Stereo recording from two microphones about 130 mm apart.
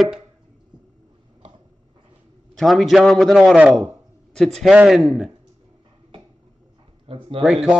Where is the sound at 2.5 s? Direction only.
Centre (ahead or behind).